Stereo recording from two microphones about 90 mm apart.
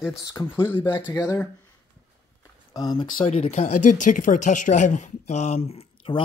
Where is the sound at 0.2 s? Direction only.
45° left (ahead or behind).